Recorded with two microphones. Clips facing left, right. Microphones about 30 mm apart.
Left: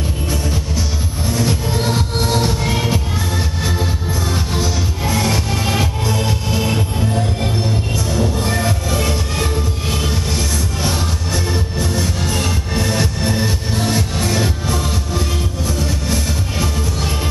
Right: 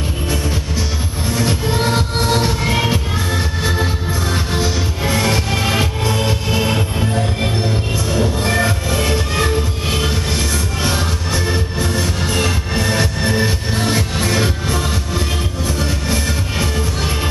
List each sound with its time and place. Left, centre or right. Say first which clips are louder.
1.3 s music: right 1 dB; centre